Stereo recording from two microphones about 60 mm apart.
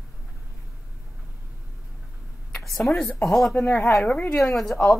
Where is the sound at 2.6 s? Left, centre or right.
Centre.